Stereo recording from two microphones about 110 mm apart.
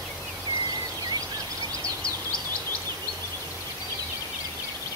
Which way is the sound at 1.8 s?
10° left (ahead or behind).